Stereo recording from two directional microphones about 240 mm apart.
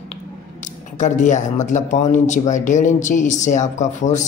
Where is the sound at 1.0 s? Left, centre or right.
Left.